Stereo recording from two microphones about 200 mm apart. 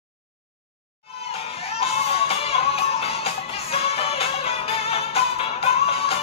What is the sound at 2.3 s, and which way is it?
Music, 30° left (ahead or behind).